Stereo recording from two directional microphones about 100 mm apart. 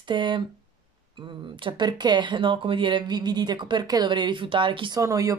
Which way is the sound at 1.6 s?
50° right (ahead or behind).